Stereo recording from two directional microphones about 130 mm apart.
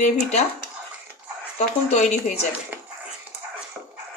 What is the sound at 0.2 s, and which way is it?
Speech, 60° left (ahead or behind).